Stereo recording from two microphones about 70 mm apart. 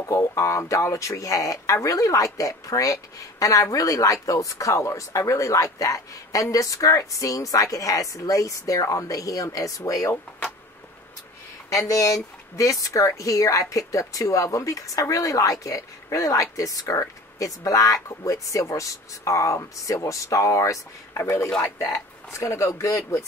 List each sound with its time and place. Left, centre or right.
0.4 s a woman's voice: left
11.7 s a woman's voice: left
21.1 s a woman's voice: left